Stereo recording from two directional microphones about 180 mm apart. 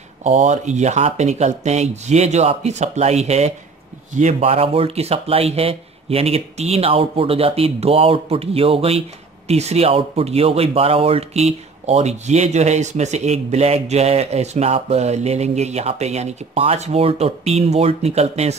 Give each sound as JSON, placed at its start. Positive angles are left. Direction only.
{"t": 0.2, "sound": "speech", "side_deg": -40}